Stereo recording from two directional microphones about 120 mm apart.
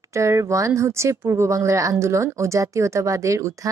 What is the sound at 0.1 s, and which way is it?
Speech, 25° right (ahead or behind).